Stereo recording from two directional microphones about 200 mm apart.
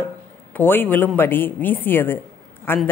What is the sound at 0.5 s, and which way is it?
Speech, 10° left (ahead or behind).